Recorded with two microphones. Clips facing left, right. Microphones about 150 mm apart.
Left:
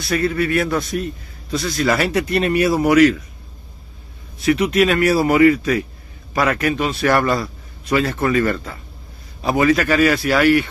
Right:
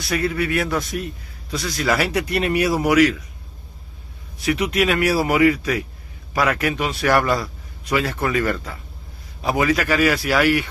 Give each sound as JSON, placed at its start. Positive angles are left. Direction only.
{"t": 0.1, "sound": "speech", "side_deg": -15}
{"t": 1.8, "sound": "speech", "side_deg": -10}
{"t": 4.5, "sound": "speech", "side_deg": -10}